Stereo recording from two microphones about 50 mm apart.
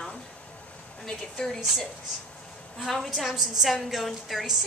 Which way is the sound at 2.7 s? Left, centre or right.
Centre.